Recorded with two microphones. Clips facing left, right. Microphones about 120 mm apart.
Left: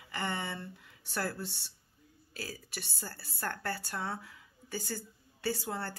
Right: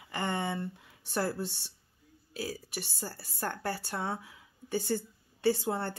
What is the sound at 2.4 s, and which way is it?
Speech, 10° right (ahead or behind).